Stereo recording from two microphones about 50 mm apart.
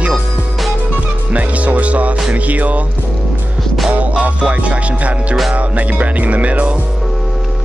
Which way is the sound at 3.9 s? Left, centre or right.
Right.